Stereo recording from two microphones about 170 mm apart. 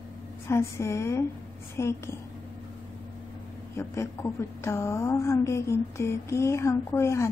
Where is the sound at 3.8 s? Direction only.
15° left (ahead or behind).